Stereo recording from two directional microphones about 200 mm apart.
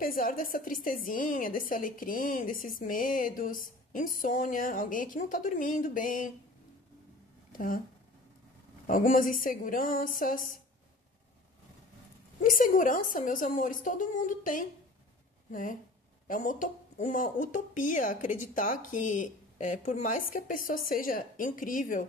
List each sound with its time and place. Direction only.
0.0 s a woman's voice: 45° left (ahead or behind)
7.5 s speech: 45° left (ahead or behind)
8.8 s a woman's voice: 45° left (ahead or behind)
12.4 s speech: 40° left (ahead or behind)